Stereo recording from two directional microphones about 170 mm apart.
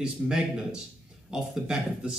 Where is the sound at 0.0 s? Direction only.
5° right (ahead or behind).